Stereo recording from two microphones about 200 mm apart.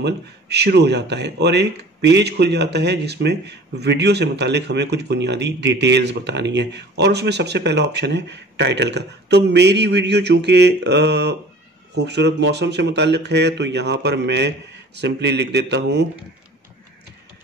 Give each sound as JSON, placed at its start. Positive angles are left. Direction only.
{"t": 0.0, "sound": "speech", "side_deg": -55}